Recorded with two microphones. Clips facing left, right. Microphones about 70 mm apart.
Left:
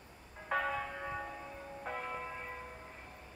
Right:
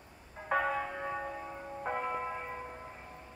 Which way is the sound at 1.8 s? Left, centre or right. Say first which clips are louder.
Right 6 dB; right.